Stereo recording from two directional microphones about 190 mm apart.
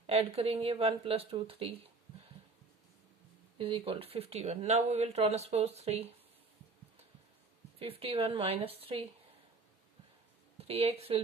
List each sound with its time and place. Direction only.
0.0 s speech: 30° right (ahead or behind)
3.5 s speech: 30° right (ahead or behind)
7.8 s speech: 30° right (ahead or behind)
10.6 s speech: 30° right (ahead or behind)